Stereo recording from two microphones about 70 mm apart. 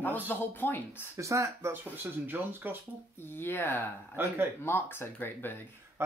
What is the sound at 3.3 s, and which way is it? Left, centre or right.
Speech, left.